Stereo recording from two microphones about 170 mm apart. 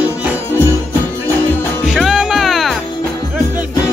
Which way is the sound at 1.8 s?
Centre (ahead or behind).